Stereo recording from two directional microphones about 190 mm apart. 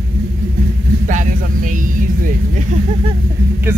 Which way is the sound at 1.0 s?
45° right (ahead or behind).